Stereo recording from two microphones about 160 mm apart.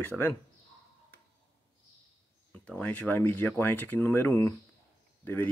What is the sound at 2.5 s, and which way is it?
Speech, 10° left (ahead or behind).